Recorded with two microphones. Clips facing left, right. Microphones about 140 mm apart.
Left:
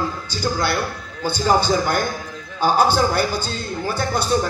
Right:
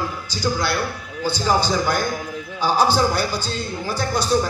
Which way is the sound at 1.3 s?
55° left (ahead or behind).